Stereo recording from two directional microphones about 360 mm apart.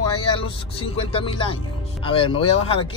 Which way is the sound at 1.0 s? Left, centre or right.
Centre.